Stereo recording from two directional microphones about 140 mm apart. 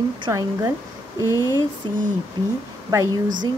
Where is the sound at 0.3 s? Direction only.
20° right (ahead or behind).